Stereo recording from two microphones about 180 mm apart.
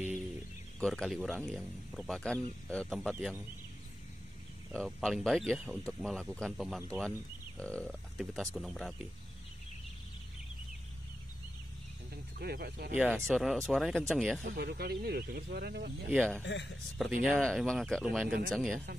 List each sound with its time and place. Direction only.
0.7 s speech: 5° left (ahead or behind)
4.7 s speech: centre (ahead or behind)
12.4 s speech: 60° right (ahead or behind)
13.1 s speech: centre (ahead or behind)
14.4 s speech: 65° right (ahead or behind)
16.2 s speech: 5° left (ahead or behind)
16.4 s a man's voice: 75° left (ahead or behind)
17.2 s speech: centre (ahead or behind)